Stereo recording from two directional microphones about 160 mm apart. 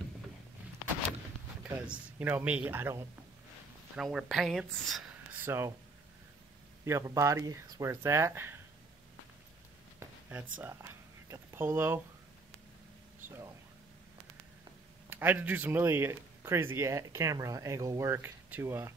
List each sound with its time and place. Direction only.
1.6 s speech: 10° right (ahead or behind)
3.9 s speech: 5° right (ahead or behind)
5.4 s speech: 15° right (ahead or behind)
6.8 s speech: 20° right (ahead or behind)
10.6 s a sound: 15° right (ahead or behind)
15.0 s speech: 10° right (ahead or behind)